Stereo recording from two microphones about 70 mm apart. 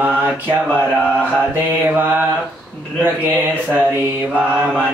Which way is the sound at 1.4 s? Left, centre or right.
Right.